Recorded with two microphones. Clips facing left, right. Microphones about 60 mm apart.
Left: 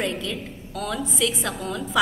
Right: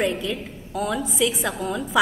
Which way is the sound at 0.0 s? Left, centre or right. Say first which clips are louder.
Right 3 dB; centre.